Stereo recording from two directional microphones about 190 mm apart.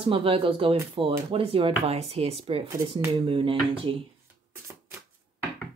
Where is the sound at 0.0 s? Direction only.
30° right (ahead or behind).